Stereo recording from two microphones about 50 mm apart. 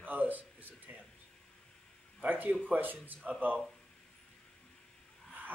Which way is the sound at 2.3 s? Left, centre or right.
Right.